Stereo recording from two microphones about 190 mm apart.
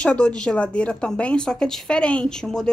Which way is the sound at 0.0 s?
5° left (ahead or behind).